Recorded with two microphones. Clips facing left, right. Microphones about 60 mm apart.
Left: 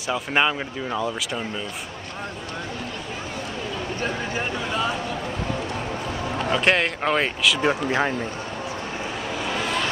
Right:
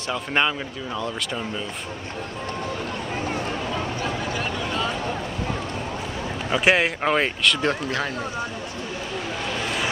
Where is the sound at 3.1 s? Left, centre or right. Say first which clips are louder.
Right 4 dB; right.